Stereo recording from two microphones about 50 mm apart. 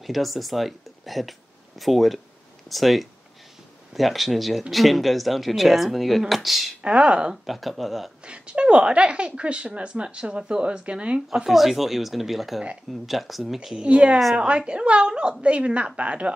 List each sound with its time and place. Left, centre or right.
0.0 s speech: centre
6.8 s speech: right
7.4 s speech: centre
8.3 s speech: right
11.4 s speech: centre
13.8 s speech: right